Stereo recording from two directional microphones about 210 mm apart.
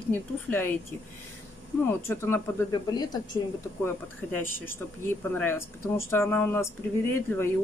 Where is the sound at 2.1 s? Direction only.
10° left (ahead or behind).